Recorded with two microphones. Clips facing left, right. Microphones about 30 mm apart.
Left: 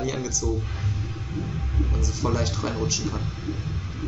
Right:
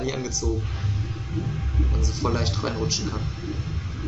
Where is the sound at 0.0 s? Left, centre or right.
Right.